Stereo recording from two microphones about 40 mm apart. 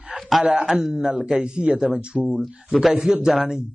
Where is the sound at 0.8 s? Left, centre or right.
Centre.